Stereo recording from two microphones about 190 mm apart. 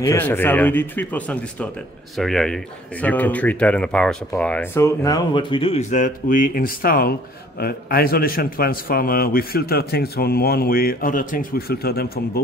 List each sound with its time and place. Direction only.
0.0 s speech: 15° left (ahead or behind); by 12.1 s 55° left (ahead or behind)